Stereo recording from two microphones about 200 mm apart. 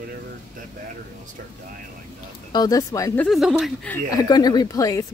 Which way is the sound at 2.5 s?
20° left (ahead or behind).